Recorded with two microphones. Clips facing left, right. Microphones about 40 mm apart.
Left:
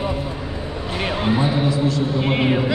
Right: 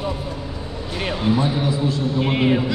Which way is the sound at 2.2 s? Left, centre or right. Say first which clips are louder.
Right 1 dB; centre.